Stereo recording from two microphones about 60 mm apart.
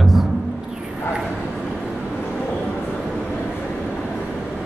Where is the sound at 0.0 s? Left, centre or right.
Centre.